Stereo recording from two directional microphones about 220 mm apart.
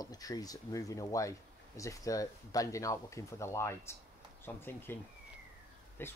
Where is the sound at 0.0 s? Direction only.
15° left (ahead or behind).